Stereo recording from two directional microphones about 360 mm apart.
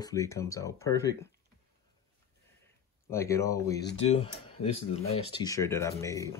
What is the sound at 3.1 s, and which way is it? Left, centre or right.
Speech, centre.